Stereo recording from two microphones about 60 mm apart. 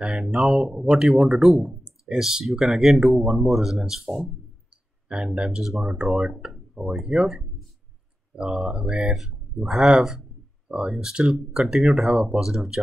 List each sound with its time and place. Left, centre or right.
0.0 s speech: centre
5.0 s speech: centre
5.6 s speech: centre
8.5 s speech: centre